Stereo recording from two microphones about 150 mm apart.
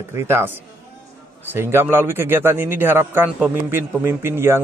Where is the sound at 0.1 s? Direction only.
15° right (ahead or behind).